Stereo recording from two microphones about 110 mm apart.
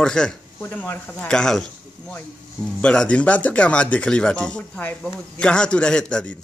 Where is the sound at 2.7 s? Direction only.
10° left (ahead or behind).